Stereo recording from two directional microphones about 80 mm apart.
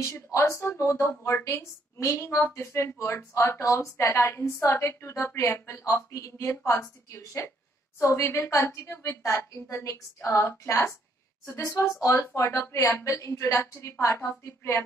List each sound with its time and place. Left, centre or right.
0.0 s a woman's voice: left